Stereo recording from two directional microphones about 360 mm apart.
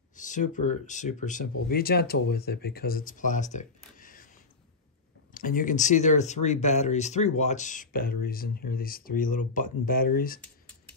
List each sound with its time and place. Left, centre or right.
0.1 s speech: left
5.3 s speech: left